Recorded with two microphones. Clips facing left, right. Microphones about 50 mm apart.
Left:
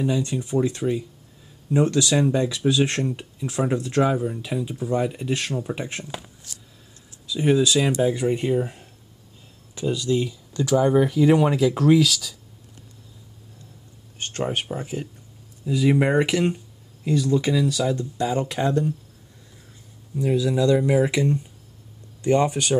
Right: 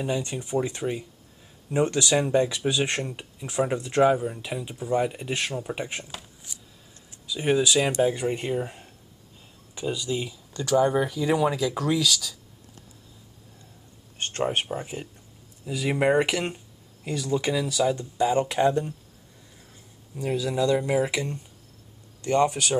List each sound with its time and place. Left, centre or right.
0.0 s speech: centre
6.5 s a sound: centre
7.2 s speech: centre
14.7 s speech: centre
20.4 s speech: centre
22.2 s speech: centre